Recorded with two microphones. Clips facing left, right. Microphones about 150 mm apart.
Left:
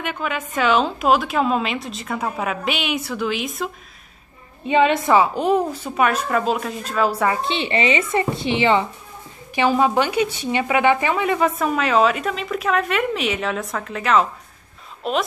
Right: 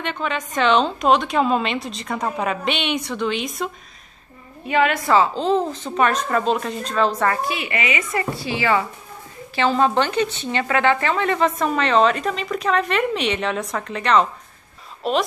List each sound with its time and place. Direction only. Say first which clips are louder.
0.0 s speech: even; 10° left (ahead or behind)
4.6 s a woman's voice: left 2 dB; 25° left (ahead or behind)
7.4 s a woman's voice: left 4 dB; 30° left (ahead or behind)
9.6 s speech: left 1 dB; 10° left (ahead or behind)